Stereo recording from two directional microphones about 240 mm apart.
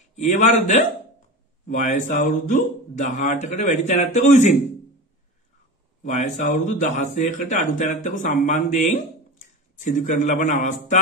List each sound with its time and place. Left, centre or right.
0.1 s a man's voice: left
6.0 s speech: left